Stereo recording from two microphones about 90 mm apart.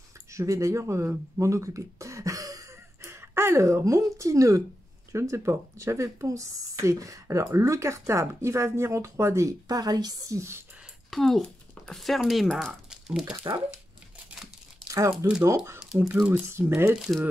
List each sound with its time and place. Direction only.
0.3 s speech: 35° right (ahead or behind)
11.1 s speech: centre (ahead or behind)
12.9 s a sound: 5° right (ahead or behind)
13.5 s speech: 55° right (ahead or behind)
15.2 s speech: 40° right (ahead or behind)
16.1 s speech: 15° right (ahead or behind)
16.4 s speech: 30° right (ahead or behind)